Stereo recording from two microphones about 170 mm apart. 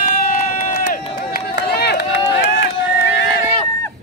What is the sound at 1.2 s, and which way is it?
Run, 75° left (ahead or behind).